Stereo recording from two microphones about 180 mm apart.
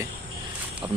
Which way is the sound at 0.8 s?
20° right (ahead or behind).